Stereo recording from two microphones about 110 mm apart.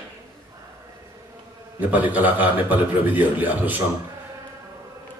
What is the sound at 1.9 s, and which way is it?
Speech, 15° right (ahead or behind).